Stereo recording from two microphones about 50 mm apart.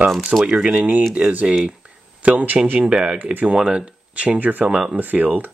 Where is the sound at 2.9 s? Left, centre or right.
Centre.